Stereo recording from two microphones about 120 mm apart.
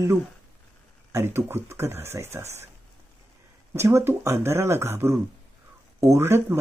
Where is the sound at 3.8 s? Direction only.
20° right (ahead or behind).